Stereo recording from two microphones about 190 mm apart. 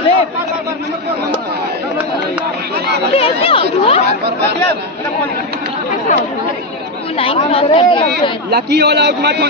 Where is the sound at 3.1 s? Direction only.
30° left (ahead or behind).